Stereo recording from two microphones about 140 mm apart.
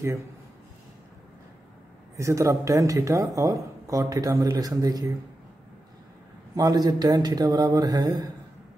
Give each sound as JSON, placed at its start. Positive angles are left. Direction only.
{"t": 2.1, "sound": "speech", "side_deg": -20}
{"t": 6.5, "sound": "speech", "side_deg": -25}